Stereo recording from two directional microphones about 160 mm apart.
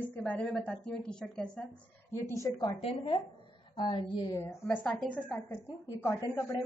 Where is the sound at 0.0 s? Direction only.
10° left (ahead or behind).